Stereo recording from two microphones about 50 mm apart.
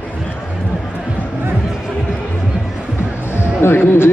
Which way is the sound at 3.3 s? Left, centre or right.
Left.